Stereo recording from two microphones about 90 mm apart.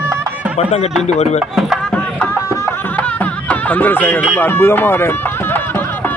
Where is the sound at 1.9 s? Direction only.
15° left (ahead or behind).